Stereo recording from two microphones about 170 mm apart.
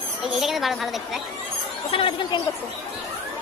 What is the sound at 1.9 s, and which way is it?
Speech, 30° left (ahead or behind).